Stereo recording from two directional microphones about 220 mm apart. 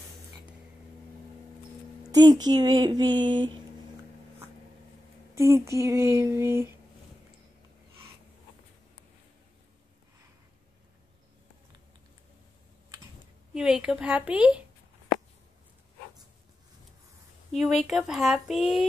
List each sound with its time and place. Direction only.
2.0 s music: 20° right (ahead or behind)
2.4 s speech: 20° right (ahead or behind)
5.3 s speech: 15° right (ahead or behind)
13.5 s a woman's voice: 5° right (ahead or behind)
17.8 s a woman's voice: centre (ahead or behind)